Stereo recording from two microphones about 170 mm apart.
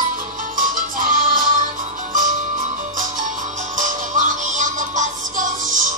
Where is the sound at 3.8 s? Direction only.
45° right (ahead or behind).